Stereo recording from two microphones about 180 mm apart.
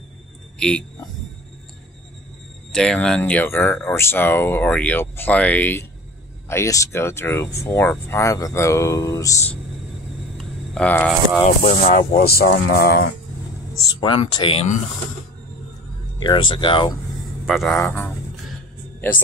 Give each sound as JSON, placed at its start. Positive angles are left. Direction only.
{"t": 0.6, "sound": "speech", "side_deg": 5}
{"t": 2.7, "sound": "speech", "side_deg": 5}
{"t": 10.3, "sound": "speech", "side_deg": 5}
{"t": 11.4, "sound": "speech", "side_deg": 40}
{"t": 12.1, "sound": "speech", "side_deg": 55}
{"t": 13.9, "sound": "speech", "side_deg": 30}
{"t": 16.2, "sound": "speech", "side_deg": 25}
{"t": 17.5, "sound": "speech", "side_deg": 0}